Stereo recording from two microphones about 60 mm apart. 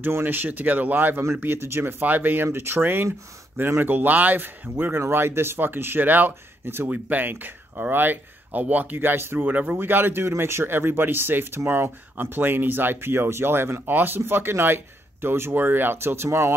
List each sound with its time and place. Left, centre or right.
0.0 s speech: right
6.9 s speech: right
9.5 s speech: right